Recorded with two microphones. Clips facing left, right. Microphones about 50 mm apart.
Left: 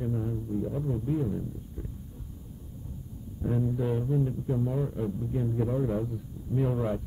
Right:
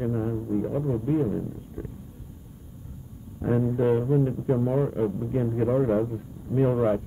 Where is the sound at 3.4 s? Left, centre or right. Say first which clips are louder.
Right 6 dB; right.